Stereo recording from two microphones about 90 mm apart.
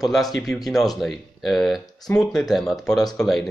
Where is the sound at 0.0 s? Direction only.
Centre (ahead or behind).